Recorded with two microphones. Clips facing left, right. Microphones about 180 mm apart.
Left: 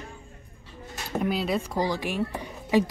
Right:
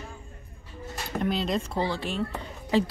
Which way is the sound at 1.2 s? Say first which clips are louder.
Left 1 dB; 5° left (ahead or behind).